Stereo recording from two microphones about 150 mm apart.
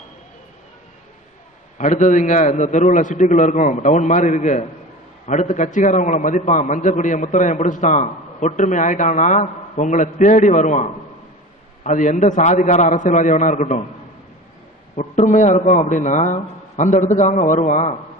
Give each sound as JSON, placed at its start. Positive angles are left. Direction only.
{"t": 1.8, "sound": "a man's voice", "side_deg": 55}
{"t": 15.0, "sound": "a man's voice", "side_deg": 50}